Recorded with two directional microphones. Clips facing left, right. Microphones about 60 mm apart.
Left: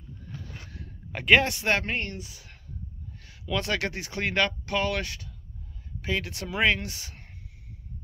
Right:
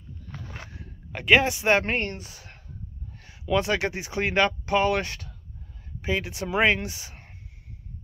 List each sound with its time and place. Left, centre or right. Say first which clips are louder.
0.3 s a sound: right 3 dB; right
1.1 s speech: right 1 dB; centre
1.9 s speech: right 4 dB; right
3.2 s speech: right 6 dB; right